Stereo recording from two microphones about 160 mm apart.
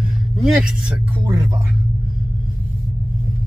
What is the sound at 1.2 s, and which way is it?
Speech, 20° right (ahead or behind).